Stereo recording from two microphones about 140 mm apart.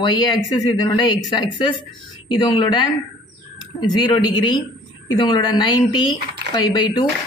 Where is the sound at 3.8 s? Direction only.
30° left (ahead or behind).